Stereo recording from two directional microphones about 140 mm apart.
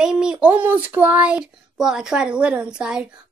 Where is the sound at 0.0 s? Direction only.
5° right (ahead or behind).